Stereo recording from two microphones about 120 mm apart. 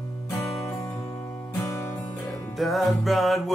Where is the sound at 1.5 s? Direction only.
25° left (ahead or behind).